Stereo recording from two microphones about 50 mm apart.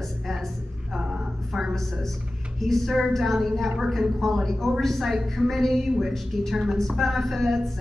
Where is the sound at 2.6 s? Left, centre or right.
Centre.